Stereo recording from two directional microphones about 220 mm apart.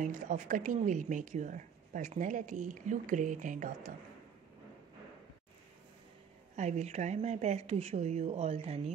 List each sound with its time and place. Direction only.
0.0 s a woman's voice: 35° right (ahead or behind)
6.5 s a woman's voice: 30° right (ahead or behind)